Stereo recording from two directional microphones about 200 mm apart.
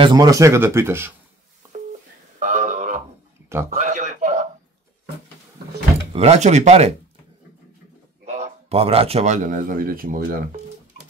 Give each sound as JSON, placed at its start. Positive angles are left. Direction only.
{"t": 0.0, "sound": "speech", "side_deg": -20}
{"t": 1.7, "sound": "busy signal", "side_deg": -35}
{"t": 3.7, "sound": "chuckle", "side_deg": -35}
{"t": 6.1, "sound": "speech", "side_deg": -35}
{"t": 8.3, "sound": "speech", "side_deg": -30}